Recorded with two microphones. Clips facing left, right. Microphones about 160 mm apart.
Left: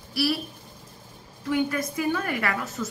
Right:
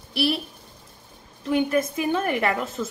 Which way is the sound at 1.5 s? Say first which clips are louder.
Right 4 dB; 25° right (ahead or behind).